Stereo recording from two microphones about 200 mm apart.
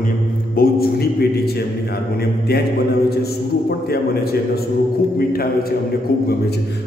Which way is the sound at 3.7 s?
50° left (ahead or behind).